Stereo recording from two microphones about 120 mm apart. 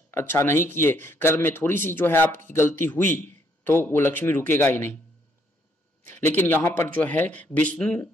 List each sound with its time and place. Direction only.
0.1 s speech: 20° left (ahead or behind)
6.0 s speech: 20° left (ahead or behind)